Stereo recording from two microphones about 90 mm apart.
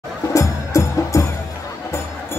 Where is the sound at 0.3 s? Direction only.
35° left (ahead or behind).